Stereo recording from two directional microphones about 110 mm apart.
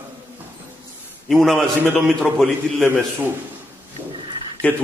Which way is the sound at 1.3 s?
5° left (ahead or behind).